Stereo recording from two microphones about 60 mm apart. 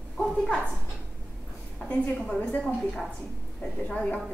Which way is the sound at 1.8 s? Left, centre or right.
Centre.